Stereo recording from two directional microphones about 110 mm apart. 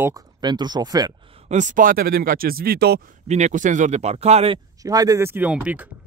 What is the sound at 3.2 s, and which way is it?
Speech, 90° right.